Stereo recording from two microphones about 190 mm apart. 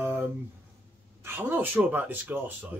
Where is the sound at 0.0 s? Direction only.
10° right (ahead or behind).